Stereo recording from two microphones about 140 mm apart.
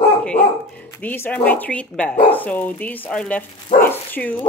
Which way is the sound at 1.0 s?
15° left (ahead or behind).